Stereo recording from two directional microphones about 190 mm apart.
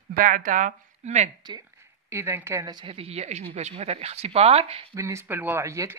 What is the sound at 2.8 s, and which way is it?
Speech, 30° right (ahead or behind).